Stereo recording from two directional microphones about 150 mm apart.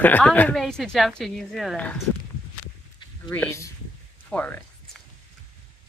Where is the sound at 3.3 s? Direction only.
15° left (ahead or behind).